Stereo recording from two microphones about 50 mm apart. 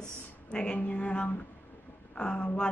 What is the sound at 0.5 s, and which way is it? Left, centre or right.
A woman's voice, centre.